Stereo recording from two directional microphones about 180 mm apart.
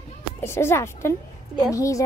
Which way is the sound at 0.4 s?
15° left (ahead or behind).